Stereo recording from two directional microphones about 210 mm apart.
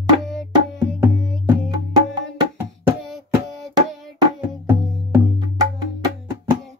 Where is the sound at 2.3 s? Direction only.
10° right (ahead or behind).